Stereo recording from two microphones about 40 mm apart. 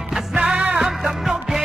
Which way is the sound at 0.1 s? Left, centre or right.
Centre.